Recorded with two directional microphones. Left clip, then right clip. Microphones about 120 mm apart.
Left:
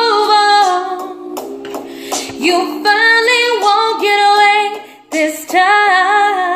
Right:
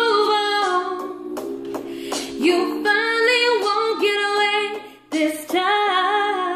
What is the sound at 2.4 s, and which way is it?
Music, 15° right (ahead or behind).